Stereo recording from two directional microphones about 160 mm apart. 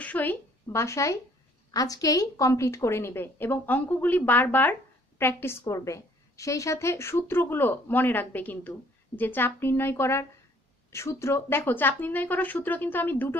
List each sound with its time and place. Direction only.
0.0 s a woman's voice: 10° left (ahead or behind)